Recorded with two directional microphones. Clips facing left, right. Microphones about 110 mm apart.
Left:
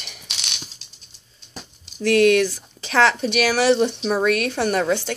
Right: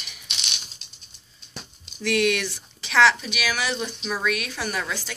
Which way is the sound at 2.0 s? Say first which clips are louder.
Left 7 dB; 40° left (ahead or behind).